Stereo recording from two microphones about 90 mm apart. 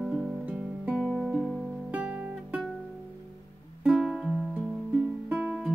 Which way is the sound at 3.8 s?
5° right (ahead or behind).